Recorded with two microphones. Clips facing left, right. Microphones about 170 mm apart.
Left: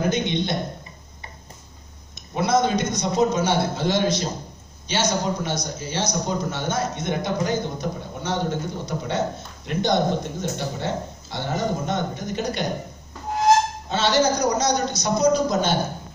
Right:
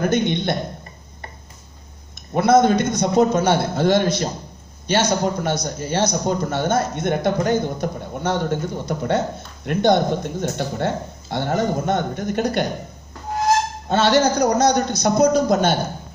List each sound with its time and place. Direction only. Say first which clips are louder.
0.1 s a man's voice: right 4 dB; 55° right (ahead or behind)
2.3 s a man's voice: right 6 dB; 55° right (ahead or behind)
13.8 s a man's voice: right 5 dB; 55° right (ahead or behind)